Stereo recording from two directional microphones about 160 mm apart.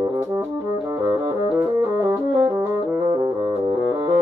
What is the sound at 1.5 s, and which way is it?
Brass instrument, 20° right (ahead or behind).